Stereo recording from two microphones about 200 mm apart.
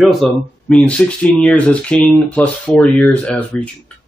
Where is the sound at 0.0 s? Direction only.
Centre (ahead or behind).